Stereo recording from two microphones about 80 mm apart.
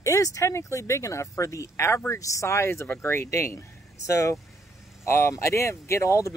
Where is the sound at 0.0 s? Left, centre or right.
Left.